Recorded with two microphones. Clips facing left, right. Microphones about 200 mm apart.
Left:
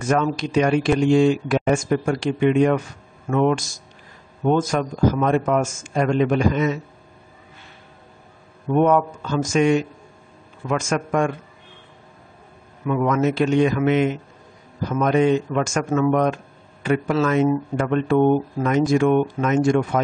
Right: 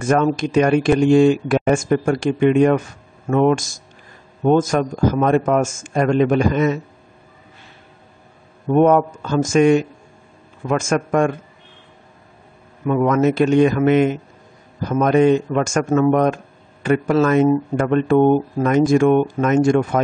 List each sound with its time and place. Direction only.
0.0 s speech: 50° right (ahead or behind)
8.6 s speech: 45° right (ahead or behind)
12.8 s speech: 45° right (ahead or behind)